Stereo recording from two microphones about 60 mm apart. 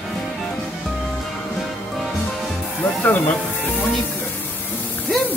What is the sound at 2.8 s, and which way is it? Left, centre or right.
Music, left.